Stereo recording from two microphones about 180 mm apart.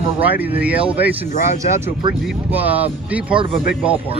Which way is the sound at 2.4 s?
10° right (ahead or behind).